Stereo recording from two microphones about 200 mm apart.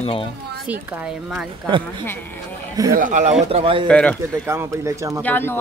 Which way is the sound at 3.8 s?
5° left (ahead or behind).